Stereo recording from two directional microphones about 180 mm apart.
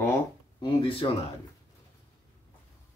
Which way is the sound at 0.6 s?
30° left (ahead or behind).